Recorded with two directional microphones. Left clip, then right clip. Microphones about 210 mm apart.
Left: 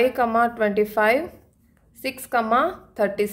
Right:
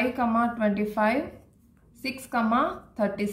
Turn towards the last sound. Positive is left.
turn(degrees=55)  # may be behind; listen again after turning